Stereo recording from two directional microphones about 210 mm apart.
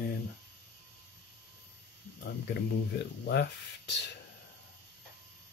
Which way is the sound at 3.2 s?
55° left (ahead or behind).